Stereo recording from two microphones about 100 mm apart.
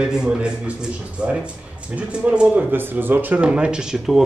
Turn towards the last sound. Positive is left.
turn(degrees=-5)  # may be behind; listen again after turning